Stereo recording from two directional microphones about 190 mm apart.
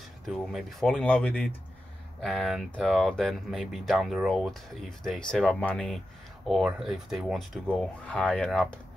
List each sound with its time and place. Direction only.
0.3 s speech: centre (ahead or behind)